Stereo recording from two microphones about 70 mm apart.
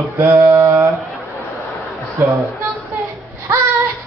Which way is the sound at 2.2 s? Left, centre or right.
Right.